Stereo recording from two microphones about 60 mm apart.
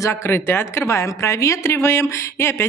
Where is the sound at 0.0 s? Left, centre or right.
Left.